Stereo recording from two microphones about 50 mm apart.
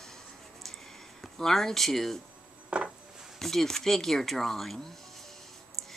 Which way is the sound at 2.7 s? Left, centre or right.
Right.